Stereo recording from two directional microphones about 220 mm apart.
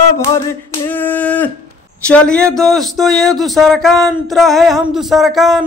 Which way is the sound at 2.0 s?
5° left (ahead or behind).